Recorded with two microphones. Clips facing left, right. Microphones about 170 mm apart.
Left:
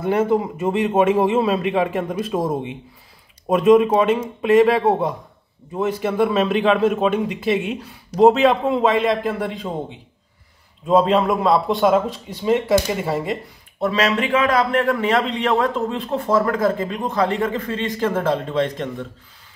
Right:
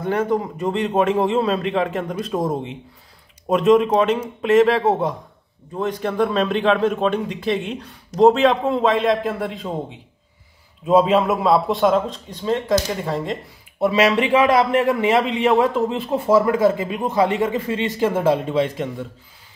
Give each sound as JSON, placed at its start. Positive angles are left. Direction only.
{"t": 0.0, "sound": "a man's voice", "side_deg": 10}
{"t": 14.1, "sound": "a man's voice", "side_deg": -25}
{"t": 14.7, "sound": "a man's voice", "side_deg": -15}